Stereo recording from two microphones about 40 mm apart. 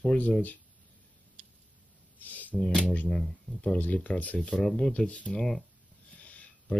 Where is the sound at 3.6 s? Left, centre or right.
Left.